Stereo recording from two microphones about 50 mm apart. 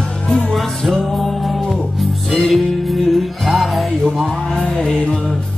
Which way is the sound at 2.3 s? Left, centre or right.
Centre.